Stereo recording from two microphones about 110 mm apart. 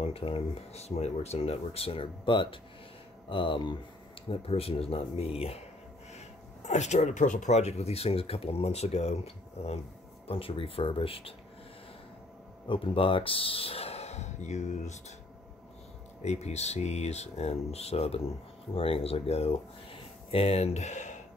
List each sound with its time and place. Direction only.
0.0 s speech: 60° left (ahead or behind)
4.3 s speech: 65° left (ahead or behind)
6.1 s speech: 90° left; by 9.8 s 75° left (ahead or behind)
10.2 s speech: 60° left (ahead or behind)
12.6 s speech: 50° left (ahead or behind); by 15.1 s 90° left
16.2 s speech: 90° left; by 18.2 s 70° left (ahead or behind)
18.8 s speech: 60° left (ahead or behind); by 21.2 s 90° left